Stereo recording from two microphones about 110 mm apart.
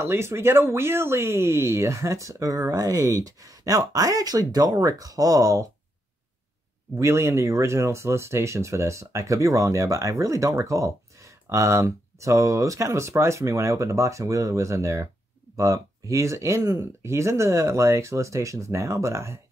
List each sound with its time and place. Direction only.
0.0 s speech: 25° right (ahead or behind)
7.0 s speech: 25° right (ahead or behind)